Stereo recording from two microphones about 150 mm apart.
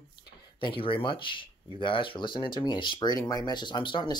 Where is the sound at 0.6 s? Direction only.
35° left (ahead or behind).